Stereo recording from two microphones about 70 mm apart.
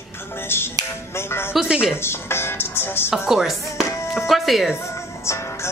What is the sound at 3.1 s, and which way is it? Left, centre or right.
A woman's voice, centre.